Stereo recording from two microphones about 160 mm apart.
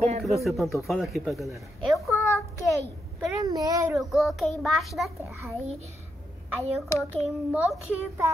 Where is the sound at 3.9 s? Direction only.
Centre (ahead or behind).